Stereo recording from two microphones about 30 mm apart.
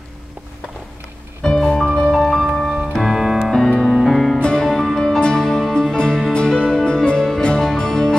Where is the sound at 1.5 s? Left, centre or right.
Centre.